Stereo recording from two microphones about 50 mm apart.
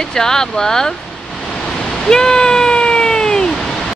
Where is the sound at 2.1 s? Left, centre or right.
Centre.